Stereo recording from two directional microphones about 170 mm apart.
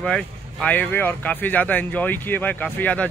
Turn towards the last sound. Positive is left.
turn(degrees=10)  # may be behind; listen again after turning